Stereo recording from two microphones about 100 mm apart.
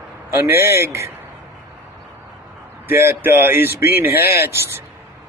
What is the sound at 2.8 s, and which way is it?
Speech, 20° right (ahead or behind).